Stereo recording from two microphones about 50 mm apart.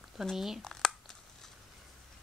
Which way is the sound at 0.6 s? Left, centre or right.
Centre.